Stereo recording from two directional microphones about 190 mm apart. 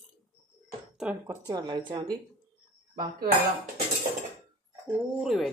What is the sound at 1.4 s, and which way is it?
Speech, 20° right (ahead or behind).